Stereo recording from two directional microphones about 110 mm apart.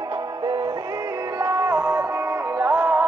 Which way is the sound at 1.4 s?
25° right (ahead or behind).